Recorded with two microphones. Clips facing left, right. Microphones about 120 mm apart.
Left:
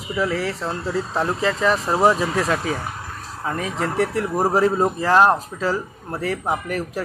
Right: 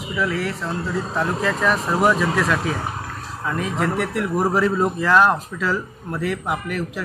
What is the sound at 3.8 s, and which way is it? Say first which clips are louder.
Speech: left 2 dB; 35° left (ahead or behind).